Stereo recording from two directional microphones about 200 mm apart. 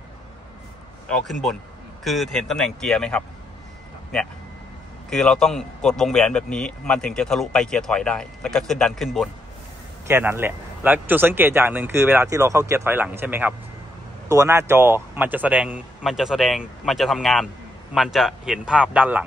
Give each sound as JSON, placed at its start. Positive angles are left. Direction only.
{"t": 1.0, "sound": "speech", "side_deg": 0}
{"t": 5.1, "sound": "speech", "side_deg": 5}
{"t": 10.0, "sound": "speech", "side_deg": -10}